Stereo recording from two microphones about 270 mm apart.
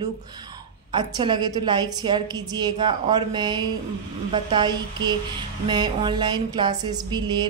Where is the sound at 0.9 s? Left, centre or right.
Centre.